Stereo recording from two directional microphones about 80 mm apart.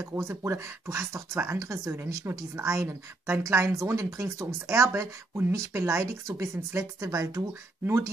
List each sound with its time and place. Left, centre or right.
0.0 s speech: right